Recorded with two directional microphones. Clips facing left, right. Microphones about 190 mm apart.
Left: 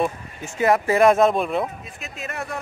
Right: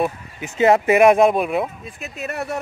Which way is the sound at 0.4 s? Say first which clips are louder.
Right 4 dB; 25° right (ahead or behind).